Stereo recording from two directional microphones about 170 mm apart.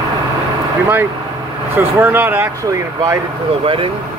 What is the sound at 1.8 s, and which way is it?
Speech, 10° right (ahead or behind).